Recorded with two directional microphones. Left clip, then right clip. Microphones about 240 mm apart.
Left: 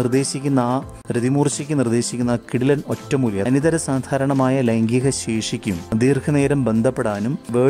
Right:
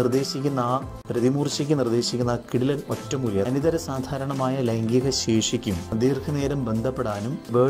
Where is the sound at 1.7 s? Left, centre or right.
Left.